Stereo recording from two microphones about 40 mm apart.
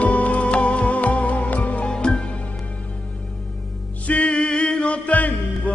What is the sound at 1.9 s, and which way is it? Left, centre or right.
Music, left.